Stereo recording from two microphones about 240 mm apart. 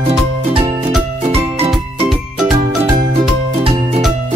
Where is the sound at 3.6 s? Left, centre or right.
Right.